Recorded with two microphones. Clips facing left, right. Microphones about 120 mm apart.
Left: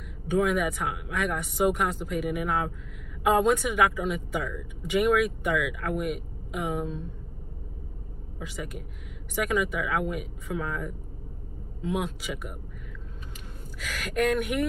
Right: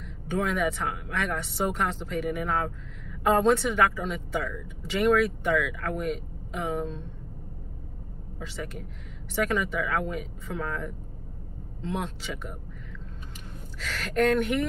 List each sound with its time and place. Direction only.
0.3 s a woman's voice: 10° left (ahead or behind)
8.4 s a woman's voice: 10° left (ahead or behind)
13.7 s a woman's voice: 10° left (ahead or behind)